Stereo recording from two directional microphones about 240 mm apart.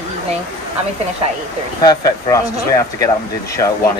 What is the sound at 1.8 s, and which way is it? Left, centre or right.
Speech, centre.